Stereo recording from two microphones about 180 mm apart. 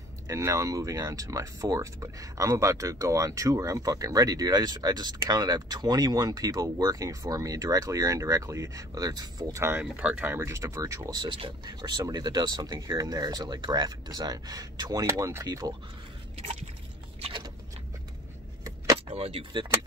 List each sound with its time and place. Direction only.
0.3 s speech: 15° right (ahead or behind)
16.3 s a sound: 35° right (ahead or behind)
19.0 s speech: 35° right (ahead or behind)